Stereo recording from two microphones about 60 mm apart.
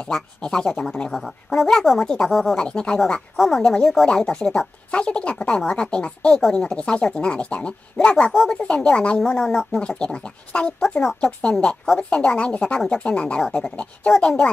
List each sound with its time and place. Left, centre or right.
0.0 s speech: centre
1.1 s speech: centre
2.5 s speech: centre
3.3 s speech: centre
8.3 s speech: centre